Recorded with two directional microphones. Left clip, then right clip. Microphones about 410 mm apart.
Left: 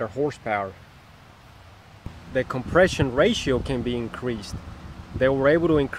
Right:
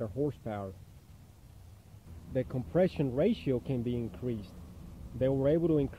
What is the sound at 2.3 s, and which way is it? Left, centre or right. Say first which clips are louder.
Speech: left 10 dB; centre.